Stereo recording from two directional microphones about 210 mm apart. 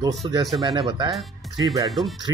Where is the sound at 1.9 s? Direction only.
Centre (ahead or behind).